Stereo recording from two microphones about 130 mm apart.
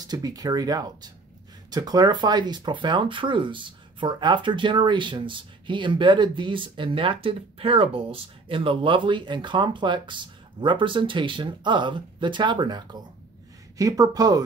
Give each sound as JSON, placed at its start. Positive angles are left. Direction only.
{"t": 0.0, "sound": "speech", "side_deg": -30}